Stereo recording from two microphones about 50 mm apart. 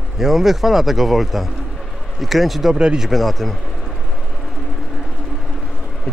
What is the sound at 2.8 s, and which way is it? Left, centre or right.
Speech, centre.